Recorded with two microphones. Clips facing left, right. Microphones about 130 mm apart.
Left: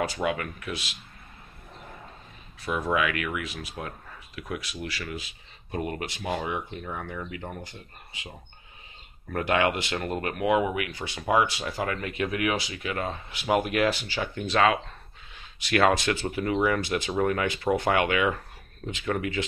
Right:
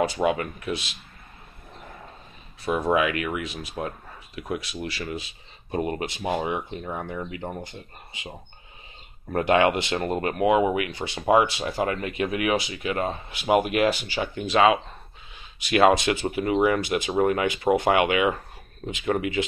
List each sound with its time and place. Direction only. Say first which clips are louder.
0.0 s speech: right 5 dB; 25° right (ahead or behind)
2.6 s speech: right 4 dB; 25° right (ahead or behind)